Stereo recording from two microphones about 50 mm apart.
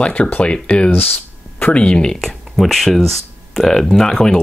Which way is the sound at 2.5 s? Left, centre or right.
Centre.